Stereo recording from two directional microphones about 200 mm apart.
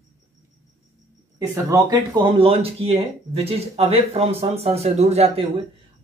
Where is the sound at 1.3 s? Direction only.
15° right (ahead or behind).